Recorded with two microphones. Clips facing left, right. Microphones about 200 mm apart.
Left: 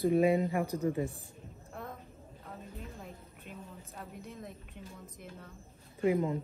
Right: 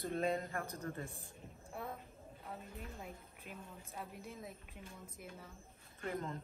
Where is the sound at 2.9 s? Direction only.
Centre (ahead or behind).